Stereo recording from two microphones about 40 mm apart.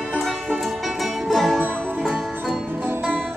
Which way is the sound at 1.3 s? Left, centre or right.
Centre.